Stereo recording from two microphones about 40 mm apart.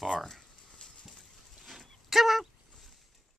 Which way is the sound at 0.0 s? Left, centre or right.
Centre.